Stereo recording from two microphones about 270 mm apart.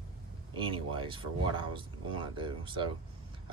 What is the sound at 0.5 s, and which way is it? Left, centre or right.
Speech, centre.